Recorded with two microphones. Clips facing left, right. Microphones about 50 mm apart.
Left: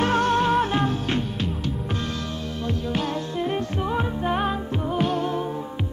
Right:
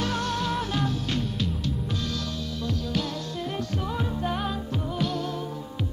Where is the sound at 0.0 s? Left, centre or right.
Left.